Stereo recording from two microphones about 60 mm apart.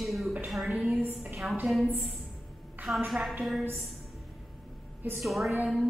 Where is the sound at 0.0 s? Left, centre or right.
Centre.